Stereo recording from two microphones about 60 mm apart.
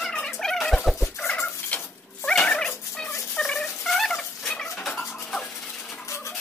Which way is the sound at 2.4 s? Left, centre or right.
Centre.